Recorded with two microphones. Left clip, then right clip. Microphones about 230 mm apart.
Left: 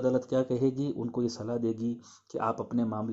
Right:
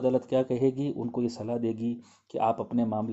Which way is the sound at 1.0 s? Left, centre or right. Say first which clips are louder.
Right 1 dB; left.